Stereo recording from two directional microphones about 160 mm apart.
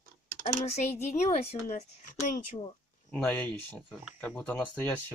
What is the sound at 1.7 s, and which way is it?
Speech, 55° left (ahead or behind).